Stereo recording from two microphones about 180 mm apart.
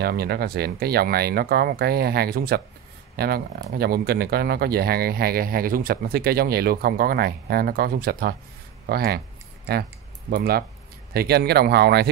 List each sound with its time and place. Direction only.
0.0 s speech: 60° right (ahead or behind)
10.3 s speech: 60° right (ahead or behind)